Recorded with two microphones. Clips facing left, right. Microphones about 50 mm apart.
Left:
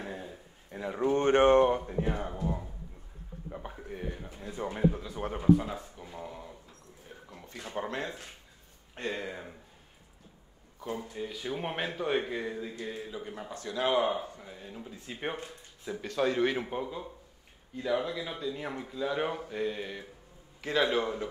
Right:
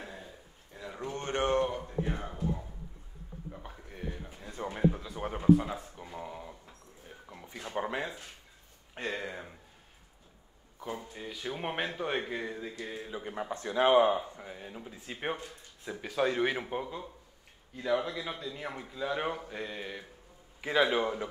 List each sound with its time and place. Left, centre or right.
0.7 s speech: left
3.5 s a sound: centre
4.4 s speech: centre
11.1 s speech: centre
13.1 s speech: centre
14.0 s speech: centre